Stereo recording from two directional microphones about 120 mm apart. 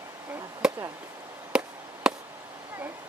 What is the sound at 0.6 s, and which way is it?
Chop, 5° right (ahead or behind).